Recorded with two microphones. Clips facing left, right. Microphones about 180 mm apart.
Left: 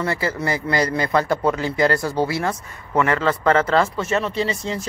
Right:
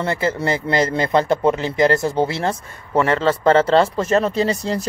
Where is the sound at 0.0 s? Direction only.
25° right (ahead or behind).